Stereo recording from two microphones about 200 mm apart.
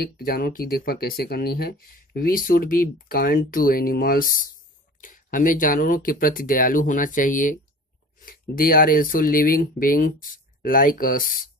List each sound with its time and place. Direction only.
0.0 s speech: 50° left (ahead or behind)